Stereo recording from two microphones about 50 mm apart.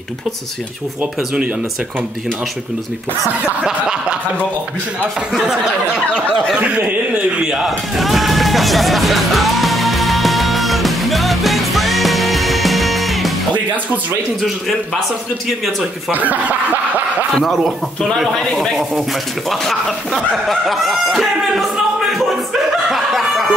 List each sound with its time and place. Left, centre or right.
7.5 s music: centre
16.1 s speech: right
17.5 s a man's voice: centre
20.4 s speech: centre
22.5 s snicker: centre